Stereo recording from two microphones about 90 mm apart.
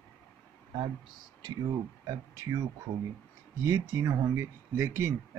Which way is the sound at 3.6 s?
30° right (ahead or behind).